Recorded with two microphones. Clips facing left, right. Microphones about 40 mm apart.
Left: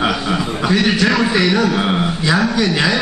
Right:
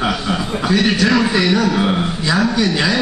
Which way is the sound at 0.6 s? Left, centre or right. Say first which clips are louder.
Even; left.